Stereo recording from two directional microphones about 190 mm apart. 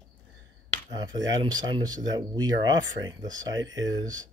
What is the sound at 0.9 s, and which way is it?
Speech, 20° right (ahead or behind).